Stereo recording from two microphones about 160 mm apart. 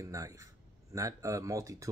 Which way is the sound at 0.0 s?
20° right (ahead or behind).